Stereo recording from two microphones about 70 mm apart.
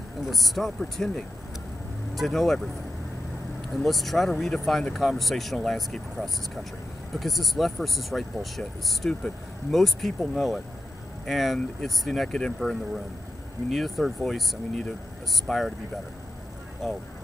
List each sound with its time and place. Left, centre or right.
0.3 s speech: centre
3.7 s speech: centre
15.4 s speech: centre
16.8 s speech: centre